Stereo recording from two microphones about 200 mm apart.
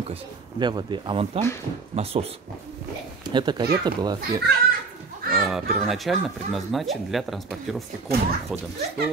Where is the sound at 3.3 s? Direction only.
20° right (ahead or behind).